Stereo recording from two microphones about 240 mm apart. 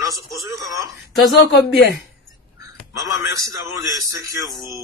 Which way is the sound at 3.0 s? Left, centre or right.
Centre.